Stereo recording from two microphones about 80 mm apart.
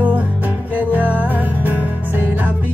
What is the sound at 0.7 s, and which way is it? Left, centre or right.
Music, centre.